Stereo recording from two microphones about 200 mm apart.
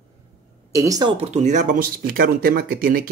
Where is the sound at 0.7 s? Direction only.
15° right (ahead or behind).